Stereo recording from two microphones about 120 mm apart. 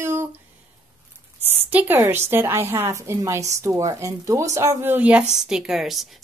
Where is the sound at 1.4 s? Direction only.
15° right (ahead or behind).